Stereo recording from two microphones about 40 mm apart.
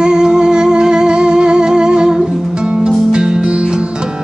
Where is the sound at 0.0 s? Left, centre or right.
Centre.